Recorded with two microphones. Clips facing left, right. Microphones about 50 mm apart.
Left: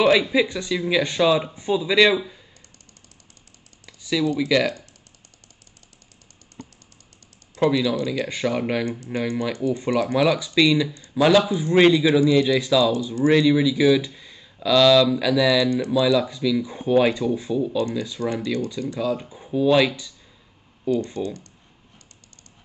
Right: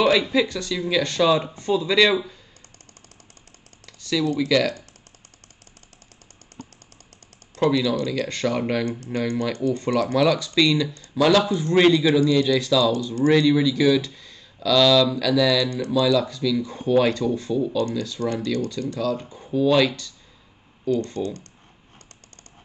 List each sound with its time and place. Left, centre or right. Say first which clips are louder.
0.0 s speech: left 1 dB; centre
3.8 s computer keyboard: left 1 dB; centre
4.5 s speech: even; centre
7.5 s speech: even; left